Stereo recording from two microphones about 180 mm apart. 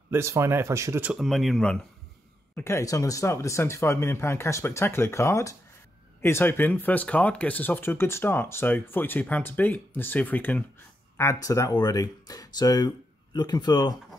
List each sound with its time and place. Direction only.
0.1 s speech: 15° right (ahead or behind)
1.1 s speech: centre (ahead or behind)
2.5 s speech: 15° left (ahead or behind)